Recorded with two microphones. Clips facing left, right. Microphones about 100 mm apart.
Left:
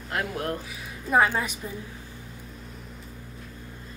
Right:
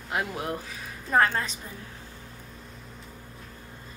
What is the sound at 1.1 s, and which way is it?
Speech, 10° left (ahead or behind).